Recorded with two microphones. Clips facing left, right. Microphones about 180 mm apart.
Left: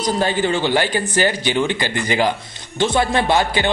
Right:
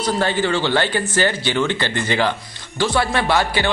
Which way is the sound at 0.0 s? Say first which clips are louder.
Left 1 dB; 15° left (ahead or behind).